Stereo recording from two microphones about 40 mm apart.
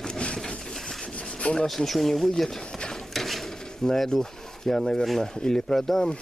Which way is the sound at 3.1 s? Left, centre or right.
Centre.